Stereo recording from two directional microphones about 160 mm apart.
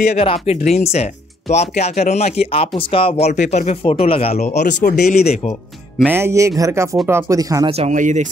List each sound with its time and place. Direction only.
0.0 s speech: 45° left (ahead or behind)
5.9 s speech: 10° right (ahead or behind)
7.9 s speech: 50° right (ahead or behind)